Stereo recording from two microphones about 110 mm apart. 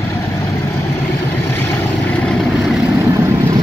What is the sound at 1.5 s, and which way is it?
Vehicle, 20° left (ahead or behind).